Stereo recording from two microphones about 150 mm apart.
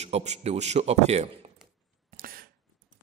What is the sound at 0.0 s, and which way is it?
A man's voice, 45° right (ahead or behind).